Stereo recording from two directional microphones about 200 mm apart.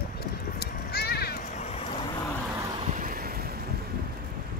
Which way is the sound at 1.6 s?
35° left (ahead or behind).